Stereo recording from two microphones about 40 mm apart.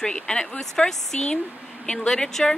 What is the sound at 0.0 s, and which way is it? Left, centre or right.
Speech, left.